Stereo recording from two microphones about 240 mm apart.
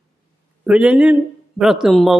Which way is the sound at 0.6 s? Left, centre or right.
Centre.